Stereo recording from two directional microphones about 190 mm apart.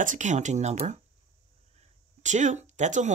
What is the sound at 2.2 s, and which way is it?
Speech, 40° right (ahead or behind).